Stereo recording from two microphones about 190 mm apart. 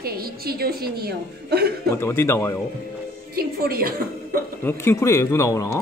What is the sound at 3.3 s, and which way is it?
Speech, 55° right (ahead or behind).